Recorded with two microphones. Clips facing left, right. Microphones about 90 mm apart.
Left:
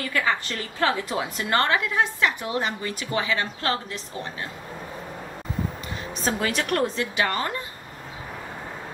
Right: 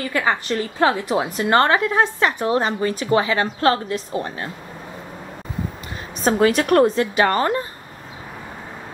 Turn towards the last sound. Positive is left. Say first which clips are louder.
# right 8 dB
turn(degrees=-40)  # may be behind; listen again after turning